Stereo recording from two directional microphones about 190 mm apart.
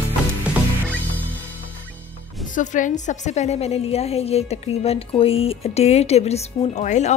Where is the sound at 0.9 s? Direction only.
10° left (ahead or behind).